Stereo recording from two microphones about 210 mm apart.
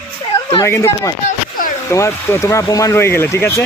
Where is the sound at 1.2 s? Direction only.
40° left (ahead or behind).